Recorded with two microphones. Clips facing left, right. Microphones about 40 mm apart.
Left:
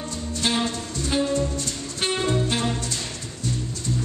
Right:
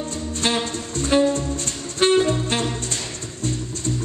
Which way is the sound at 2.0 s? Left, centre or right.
Right.